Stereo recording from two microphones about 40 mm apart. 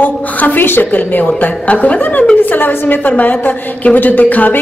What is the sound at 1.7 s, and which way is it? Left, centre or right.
Speech, left.